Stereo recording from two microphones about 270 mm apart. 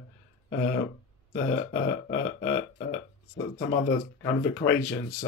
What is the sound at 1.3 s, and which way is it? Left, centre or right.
Burping, left.